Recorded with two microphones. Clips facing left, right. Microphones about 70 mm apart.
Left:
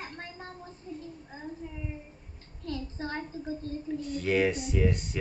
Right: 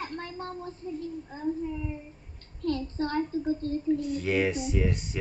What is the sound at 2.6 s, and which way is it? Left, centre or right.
A child's voice, right.